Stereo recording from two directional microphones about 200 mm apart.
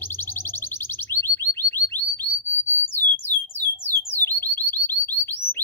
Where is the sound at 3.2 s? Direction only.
10° left (ahead or behind).